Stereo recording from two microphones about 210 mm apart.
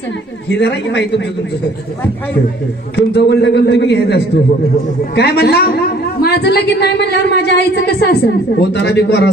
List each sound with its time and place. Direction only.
0.5 s a man's voice: 55° left (ahead or behind)
3.1 s a woman's voice: 55° left (ahead or behind)